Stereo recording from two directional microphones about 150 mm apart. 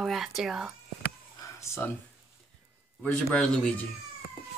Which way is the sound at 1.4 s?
20° left (ahead or behind).